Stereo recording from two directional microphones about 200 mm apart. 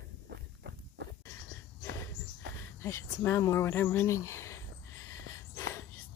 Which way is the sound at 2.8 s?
15° left (ahead or behind).